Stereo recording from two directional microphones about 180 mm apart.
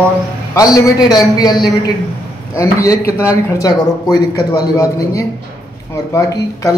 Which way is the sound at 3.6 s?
20° left (ahead or behind).